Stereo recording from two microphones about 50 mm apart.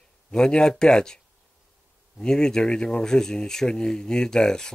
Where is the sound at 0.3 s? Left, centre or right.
Centre.